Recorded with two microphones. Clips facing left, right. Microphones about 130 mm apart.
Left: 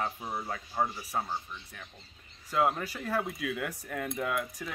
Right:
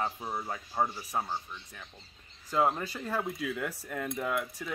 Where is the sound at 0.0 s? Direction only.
5° right (ahead or behind).